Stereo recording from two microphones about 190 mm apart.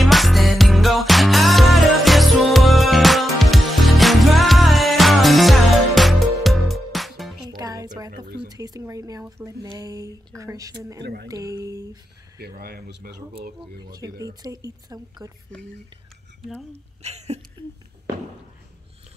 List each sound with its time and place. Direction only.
0.0 s music: centre (ahead or behind)
7.4 s music: 20° right (ahead or behind)
8.5 s speech: 20° right (ahead or behind)
11.0 s speech: 60° right (ahead or behind)
11.2 s speech: 20° right (ahead or behind)
12.4 s speech: 55° right (ahead or behind)
13.7 s speech: 20° right (ahead or behind)
17.0 s speech: 35° right (ahead or behind)